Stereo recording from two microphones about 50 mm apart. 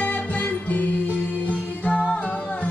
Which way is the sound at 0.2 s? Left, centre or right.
Left.